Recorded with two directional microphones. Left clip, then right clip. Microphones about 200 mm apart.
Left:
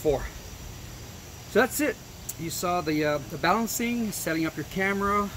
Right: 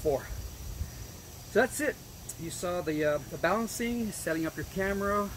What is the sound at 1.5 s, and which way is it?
Speech, 50° left (ahead or behind).